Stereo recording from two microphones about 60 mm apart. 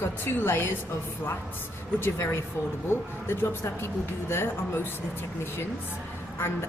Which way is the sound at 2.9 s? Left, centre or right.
Left.